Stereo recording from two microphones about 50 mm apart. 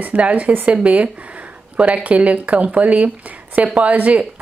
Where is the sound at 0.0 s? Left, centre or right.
Right.